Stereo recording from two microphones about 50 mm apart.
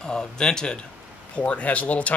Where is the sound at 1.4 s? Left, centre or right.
Left.